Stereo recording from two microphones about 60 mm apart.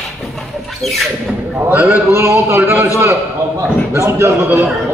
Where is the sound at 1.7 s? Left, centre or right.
Right.